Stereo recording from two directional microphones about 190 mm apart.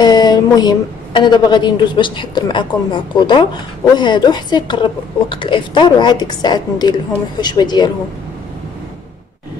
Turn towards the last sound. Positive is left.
turn(degrees=20)  # may be behind; listen again after turning